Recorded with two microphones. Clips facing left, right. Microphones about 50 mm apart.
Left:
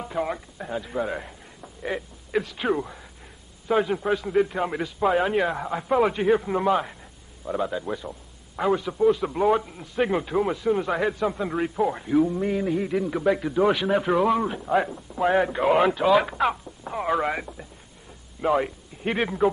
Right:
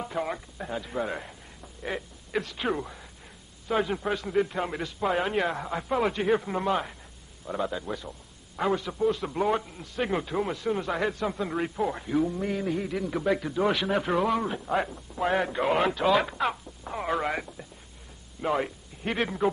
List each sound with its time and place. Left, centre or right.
0.0 s speech: centre
8.0 s a man's voice: centre
8.5 s a man's voice: centre